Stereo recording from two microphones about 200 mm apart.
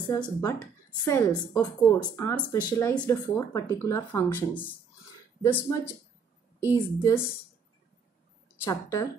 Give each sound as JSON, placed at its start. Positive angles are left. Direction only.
{"t": 0.1, "sound": "speech", "side_deg": 15}
{"t": 8.6, "sound": "speech", "side_deg": 15}